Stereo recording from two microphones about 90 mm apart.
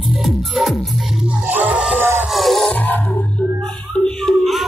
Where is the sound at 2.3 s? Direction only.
Centre (ahead or behind).